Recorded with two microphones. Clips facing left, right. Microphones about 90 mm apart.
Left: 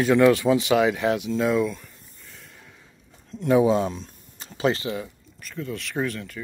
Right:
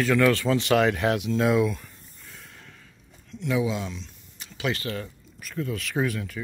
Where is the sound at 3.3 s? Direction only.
40° left (ahead or behind).